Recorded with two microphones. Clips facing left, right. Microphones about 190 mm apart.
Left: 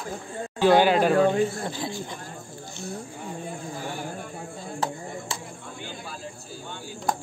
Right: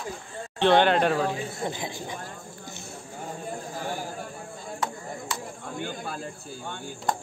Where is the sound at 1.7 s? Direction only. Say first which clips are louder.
Left 1 dB; 20° right (ahead or behind).